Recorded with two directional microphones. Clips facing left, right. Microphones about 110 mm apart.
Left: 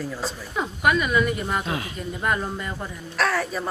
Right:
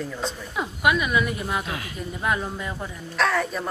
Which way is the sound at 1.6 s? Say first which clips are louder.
Left 4 dB; 30° left (ahead or behind).